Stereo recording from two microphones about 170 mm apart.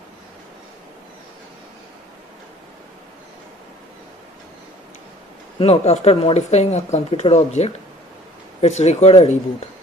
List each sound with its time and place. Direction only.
5.6 s speech: 40° left (ahead or behind)